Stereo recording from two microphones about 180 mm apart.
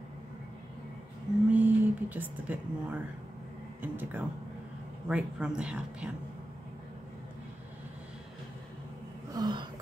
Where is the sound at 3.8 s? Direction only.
10° right (ahead or behind).